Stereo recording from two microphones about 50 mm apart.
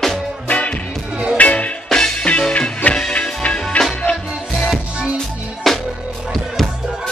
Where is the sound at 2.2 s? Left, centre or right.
Left.